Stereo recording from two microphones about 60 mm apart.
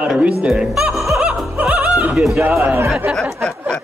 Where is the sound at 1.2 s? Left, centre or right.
Right.